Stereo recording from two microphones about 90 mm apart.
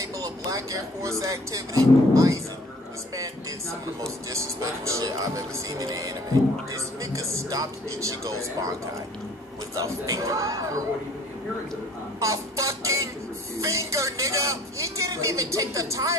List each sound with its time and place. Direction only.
0.0 s a woman's voice: 40° right (ahead or behind)
4.3 s a woman's voice: 35° right (ahead or behind)
9.8 s a woman's voice: 40° right (ahead or behind)
12.2 s a sound: 35° right (ahead or behind)
13.6 s a woman's voice: 35° right (ahead or behind)